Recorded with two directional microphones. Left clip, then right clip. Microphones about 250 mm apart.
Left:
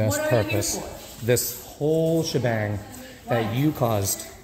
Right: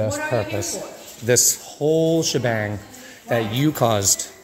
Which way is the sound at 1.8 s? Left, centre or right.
Right.